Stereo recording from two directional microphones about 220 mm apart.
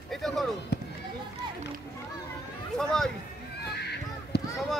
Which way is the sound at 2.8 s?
Centre (ahead or behind).